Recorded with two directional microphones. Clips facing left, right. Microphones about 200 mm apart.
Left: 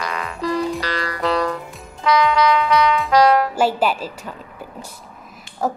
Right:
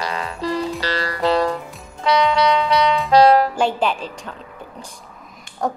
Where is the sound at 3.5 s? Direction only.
5° left (ahead or behind).